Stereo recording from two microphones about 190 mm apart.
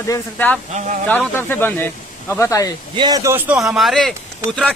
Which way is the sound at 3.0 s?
20° right (ahead or behind).